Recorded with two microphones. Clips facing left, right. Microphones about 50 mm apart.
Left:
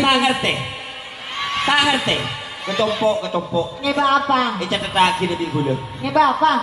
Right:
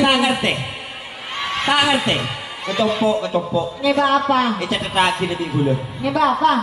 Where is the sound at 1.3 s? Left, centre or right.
Centre.